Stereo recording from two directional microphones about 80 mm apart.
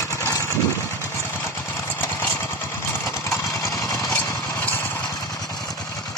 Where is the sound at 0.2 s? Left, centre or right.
Left.